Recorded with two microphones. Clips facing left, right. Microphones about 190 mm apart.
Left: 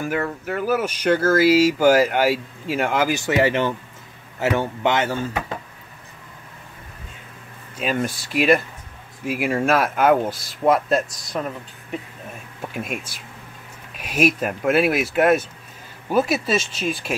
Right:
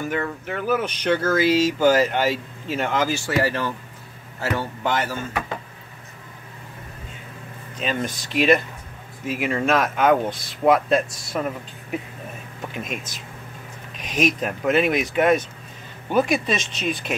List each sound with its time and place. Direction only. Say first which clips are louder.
0.0 s speech: left 2 dB; 5° left (ahead or behind); by 5.1 s 25° left (ahead or behind)
7.7 s speech: left 2 dB; 5° left (ahead or behind)
12.7 s speech: left 2 dB; 5° left (ahead or behind)